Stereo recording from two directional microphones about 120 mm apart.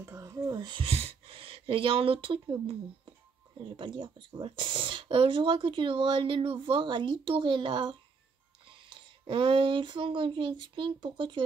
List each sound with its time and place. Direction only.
0.0 s speech: 25° right (ahead or behind)
0.8 s speech: 55° right (ahead or behind)